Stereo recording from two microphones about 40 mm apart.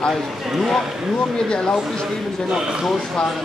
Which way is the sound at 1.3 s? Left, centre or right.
Left.